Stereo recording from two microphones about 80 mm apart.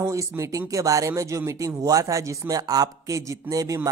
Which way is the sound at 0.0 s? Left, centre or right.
Right.